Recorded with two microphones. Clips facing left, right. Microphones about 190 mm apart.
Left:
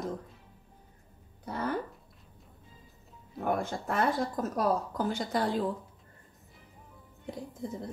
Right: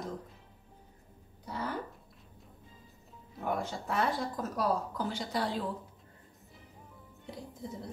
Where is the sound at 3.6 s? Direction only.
50° left (ahead or behind).